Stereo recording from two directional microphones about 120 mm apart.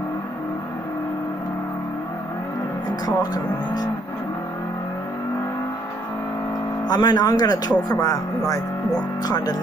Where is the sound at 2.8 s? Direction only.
35° left (ahead or behind).